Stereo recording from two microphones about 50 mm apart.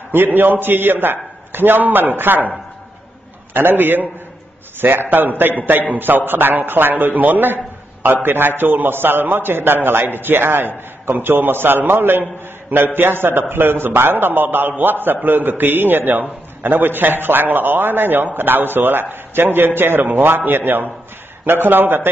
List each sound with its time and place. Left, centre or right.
0.1 s a man's voice: right
3.5 s a man's voice: right